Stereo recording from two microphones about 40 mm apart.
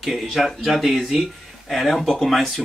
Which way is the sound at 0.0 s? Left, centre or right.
Centre.